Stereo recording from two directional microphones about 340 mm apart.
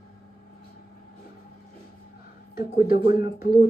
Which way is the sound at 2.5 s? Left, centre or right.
Left.